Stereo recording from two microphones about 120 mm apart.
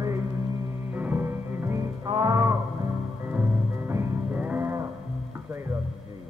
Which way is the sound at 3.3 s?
20° right (ahead or behind).